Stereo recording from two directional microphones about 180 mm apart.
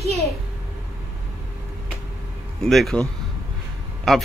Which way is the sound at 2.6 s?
Centre (ahead or behind).